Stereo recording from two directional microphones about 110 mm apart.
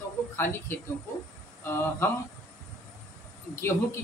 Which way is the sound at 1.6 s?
20° left (ahead or behind).